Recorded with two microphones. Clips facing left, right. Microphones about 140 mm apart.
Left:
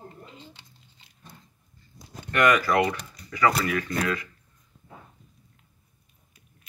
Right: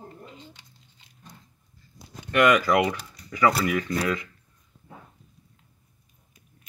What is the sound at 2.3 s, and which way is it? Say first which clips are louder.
Speech: right 2 dB; 15° right (ahead or behind).